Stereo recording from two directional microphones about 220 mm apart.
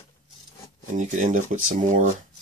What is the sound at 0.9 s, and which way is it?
Speech, 35° right (ahead or behind).